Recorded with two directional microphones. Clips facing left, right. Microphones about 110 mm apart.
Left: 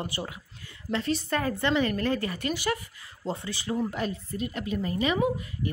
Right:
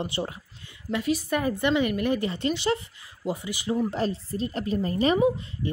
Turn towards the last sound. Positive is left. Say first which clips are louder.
# right 4 dB
turn(degrees=-30)  # may be behind; listen again after turning